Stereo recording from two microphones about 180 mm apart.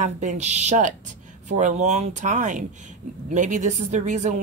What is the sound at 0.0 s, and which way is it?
Speech, 40° right (ahead or behind).